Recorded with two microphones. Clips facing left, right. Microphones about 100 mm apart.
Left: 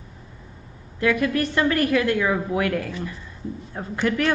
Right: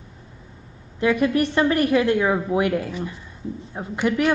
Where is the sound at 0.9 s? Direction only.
20° right (ahead or behind).